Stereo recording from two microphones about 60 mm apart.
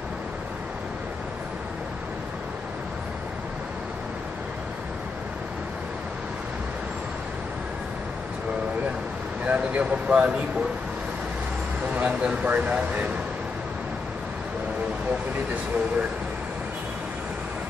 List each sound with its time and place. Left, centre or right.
9.4 s speech: right
11.9 s speech: centre